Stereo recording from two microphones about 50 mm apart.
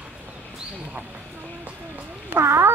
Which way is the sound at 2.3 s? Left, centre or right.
Right.